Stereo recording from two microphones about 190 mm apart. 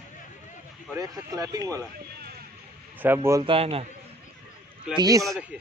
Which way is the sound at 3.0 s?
10° right (ahead or behind).